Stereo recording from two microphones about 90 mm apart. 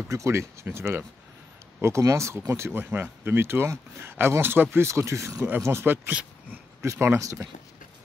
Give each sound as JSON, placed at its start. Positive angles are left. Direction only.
{"t": 0.1, "sound": "speech", "side_deg": -35}